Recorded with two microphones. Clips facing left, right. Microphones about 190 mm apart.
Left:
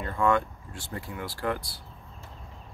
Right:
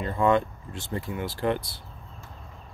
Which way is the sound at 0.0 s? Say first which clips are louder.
Right 3 dB; 20° right (ahead or behind).